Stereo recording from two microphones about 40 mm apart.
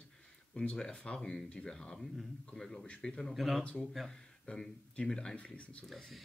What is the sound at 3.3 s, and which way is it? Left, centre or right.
Speech, centre.